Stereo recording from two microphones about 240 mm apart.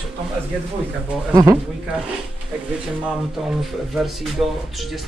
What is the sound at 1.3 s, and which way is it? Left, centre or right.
Speech, centre.